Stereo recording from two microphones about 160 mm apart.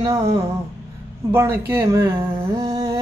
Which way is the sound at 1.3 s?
20° right (ahead or behind).